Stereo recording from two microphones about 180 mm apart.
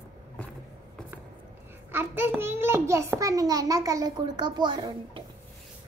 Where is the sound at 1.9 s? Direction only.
10° right (ahead or behind).